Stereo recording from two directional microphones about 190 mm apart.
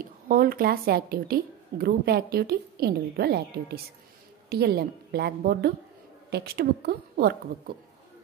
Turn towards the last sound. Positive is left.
turn(degrees=-55)  # may be behind; listen again after turning